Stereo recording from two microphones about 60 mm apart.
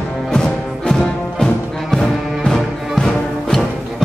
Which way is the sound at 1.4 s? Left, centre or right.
Centre.